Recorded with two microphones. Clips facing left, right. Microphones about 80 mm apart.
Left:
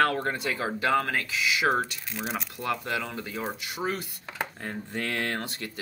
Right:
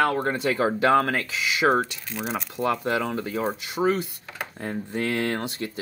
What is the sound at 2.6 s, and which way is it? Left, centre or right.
Speech, right.